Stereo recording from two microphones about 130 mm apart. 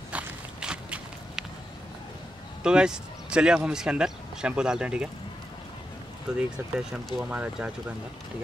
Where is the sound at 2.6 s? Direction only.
5° right (ahead or behind).